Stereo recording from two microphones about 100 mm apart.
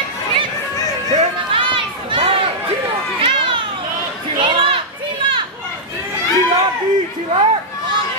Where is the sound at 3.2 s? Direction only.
60° right (ahead or behind).